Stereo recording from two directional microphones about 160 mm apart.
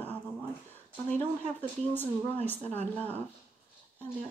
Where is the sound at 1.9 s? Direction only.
10° left (ahead or behind).